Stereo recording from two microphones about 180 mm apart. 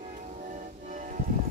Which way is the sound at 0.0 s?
45° right (ahead or behind).